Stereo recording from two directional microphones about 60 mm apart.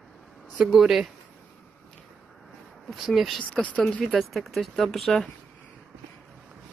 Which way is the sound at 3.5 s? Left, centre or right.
Left.